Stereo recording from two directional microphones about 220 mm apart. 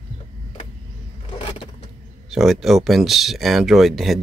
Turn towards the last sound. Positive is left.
turn(degrees=0)  # may be behind; listen again after turning